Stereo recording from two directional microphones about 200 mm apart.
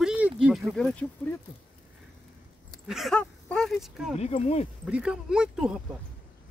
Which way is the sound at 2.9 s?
Centre (ahead or behind).